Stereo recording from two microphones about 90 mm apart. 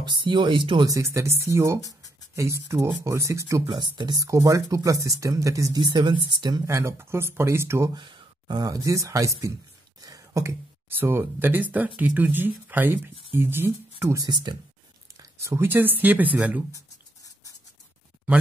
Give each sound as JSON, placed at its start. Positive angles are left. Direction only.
{"t": 0.0, "sound": "speech", "side_deg": -60}
{"t": 0.8, "sound": "speech", "side_deg": -35}
{"t": 3.6, "sound": "speech", "side_deg": -55}
{"t": 5.8, "sound": "speech", "side_deg": -55}
{"t": 6.6, "sound": "speech", "side_deg": -30}
{"t": 7.9, "sound": "gasp", "side_deg": -55}
{"t": 8.6, "sound": "speech", "side_deg": -40}
{"t": 10.0, "sound": "a sound", "side_deg": -40}
{"t": 11.0, "sound": "speech", "side_deg": -25}
{"t": 14.1, "sound": "speech", "side_deg": -45}
{"t": 15.4, "sound": "speech", "side_deg": -30}